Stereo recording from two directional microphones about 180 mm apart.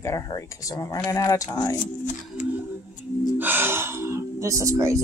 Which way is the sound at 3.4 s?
10° right (ahead or behind).